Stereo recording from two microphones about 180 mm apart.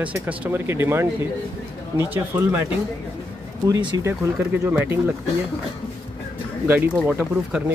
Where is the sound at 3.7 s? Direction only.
25° right (ahead or behind).